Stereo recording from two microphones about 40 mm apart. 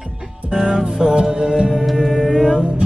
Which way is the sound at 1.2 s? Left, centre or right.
Centre.